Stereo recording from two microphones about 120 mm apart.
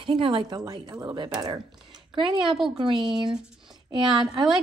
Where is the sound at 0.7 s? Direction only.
35° right (ahead or behind).